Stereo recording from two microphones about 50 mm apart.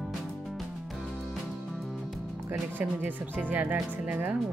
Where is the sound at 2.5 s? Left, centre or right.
Right.